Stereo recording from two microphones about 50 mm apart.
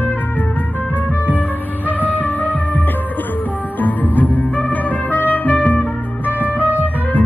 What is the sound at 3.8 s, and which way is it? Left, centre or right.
Music, left.